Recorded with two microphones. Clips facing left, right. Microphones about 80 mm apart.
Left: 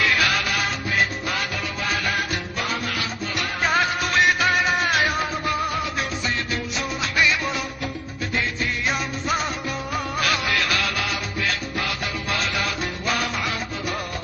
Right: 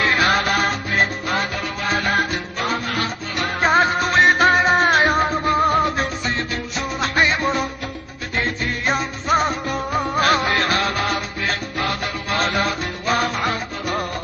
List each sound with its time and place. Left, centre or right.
0.0 s salsa music: right
1.9 s music: right